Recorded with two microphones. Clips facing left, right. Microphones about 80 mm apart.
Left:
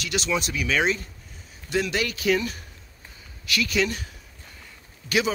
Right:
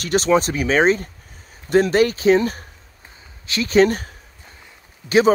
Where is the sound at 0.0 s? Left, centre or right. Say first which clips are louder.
Right 10 dB; right.